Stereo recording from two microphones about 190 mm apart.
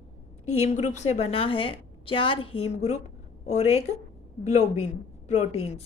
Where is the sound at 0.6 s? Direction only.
40° left (ahead or behind).